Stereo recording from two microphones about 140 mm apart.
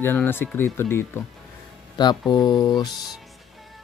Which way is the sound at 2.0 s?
30° left (ahead or behind).